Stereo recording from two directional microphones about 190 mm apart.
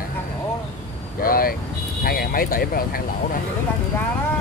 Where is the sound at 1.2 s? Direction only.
50° left (ahead or behind).